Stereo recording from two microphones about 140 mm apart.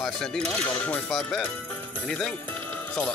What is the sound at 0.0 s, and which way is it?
Speech, 5° left (ahead or behind).